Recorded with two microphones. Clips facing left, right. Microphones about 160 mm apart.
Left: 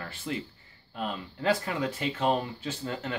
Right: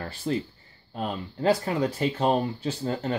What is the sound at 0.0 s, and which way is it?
Speech, 35° right (ahead or behind).